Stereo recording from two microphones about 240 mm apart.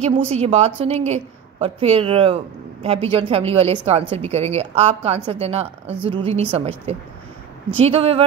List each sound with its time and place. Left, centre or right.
0.0 s a woman's voice: right